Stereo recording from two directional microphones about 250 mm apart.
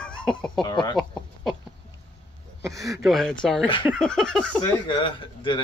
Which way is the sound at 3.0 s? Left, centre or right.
Centre.